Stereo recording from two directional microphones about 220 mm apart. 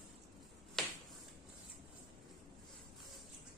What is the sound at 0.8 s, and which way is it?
Finger snapping, centre (ahead or behind).